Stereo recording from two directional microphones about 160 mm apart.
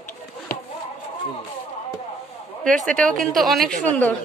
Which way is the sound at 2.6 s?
5° left (ahead or behind).